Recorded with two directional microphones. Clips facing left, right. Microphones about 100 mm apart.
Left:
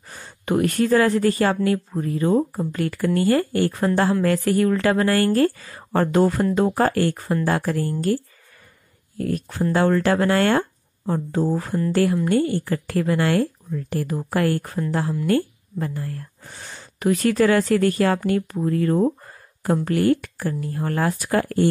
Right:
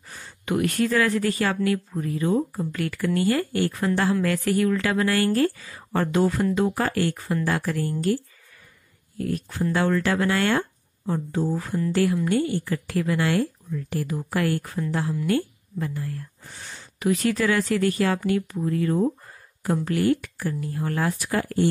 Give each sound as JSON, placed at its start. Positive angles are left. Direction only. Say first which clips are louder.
{"t": 0.2, "sound": "speech", "louder": "left 4 dB", "side_deg": 40}
{"t": 9.2, "sound": "a woman's voice", "louder": "left 3 dB", "side_deg": 45}